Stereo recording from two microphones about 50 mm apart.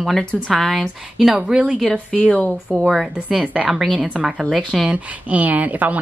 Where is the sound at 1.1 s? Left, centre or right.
Centre.